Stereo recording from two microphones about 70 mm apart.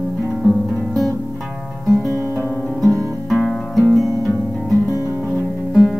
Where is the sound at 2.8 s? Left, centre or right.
Right.